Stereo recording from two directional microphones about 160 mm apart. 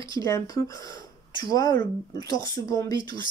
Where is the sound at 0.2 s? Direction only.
20° left (ahead or behind).